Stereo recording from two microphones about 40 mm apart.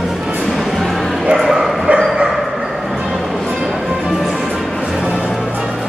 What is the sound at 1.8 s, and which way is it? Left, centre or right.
Bow-wow, right.